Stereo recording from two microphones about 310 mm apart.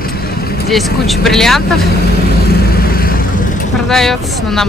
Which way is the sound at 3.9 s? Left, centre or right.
Centre.